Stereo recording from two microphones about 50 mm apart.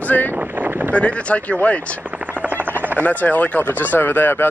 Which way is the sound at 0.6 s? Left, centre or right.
Right.